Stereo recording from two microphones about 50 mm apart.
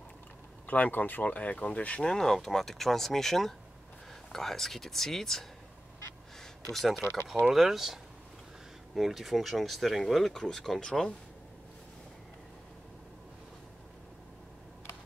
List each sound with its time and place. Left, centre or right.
0.7 s speech: left
2.0 s speech: centre
6.7 s speech: centre
7.0 s speech: left
7.5 s speech: centre